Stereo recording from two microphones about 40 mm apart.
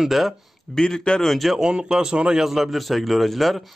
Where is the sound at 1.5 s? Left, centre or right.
Right.